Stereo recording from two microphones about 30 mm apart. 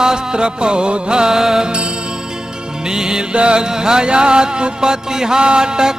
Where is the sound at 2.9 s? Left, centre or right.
Right.